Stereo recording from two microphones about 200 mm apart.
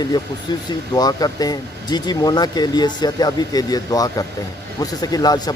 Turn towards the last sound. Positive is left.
turn(degrees=20)  # may be behind; listen again after turning